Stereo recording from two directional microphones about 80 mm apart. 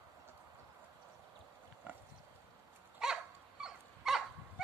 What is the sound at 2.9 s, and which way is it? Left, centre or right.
Dog, centre.